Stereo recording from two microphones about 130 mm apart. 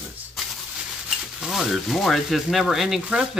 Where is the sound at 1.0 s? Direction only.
5° right (ahead or behind).